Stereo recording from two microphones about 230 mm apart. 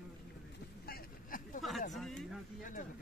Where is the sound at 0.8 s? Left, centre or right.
Left.